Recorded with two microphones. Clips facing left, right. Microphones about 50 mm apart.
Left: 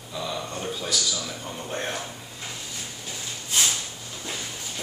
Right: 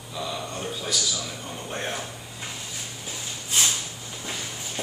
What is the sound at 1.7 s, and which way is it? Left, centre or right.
Speech, centre.